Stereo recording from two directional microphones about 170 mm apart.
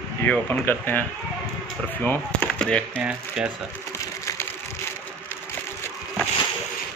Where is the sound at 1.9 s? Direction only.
10° left (ahead or behind).